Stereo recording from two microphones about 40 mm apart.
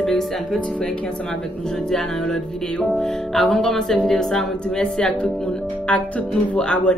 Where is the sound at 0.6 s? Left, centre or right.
Left.